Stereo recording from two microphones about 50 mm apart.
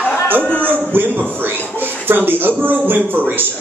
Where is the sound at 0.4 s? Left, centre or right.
Left.